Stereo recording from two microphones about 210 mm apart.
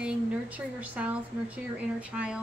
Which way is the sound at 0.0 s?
5° right (ahead or behind).